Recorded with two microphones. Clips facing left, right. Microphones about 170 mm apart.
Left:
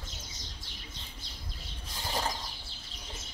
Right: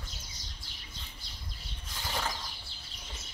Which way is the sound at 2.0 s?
30° left (ahead or behind).